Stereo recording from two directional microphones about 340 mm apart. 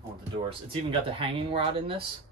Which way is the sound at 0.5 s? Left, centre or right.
Centre.